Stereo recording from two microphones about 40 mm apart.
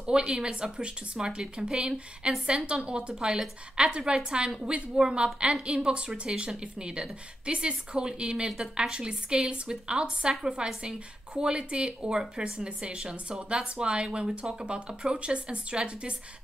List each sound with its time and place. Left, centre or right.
0.0 s a woman's voice: right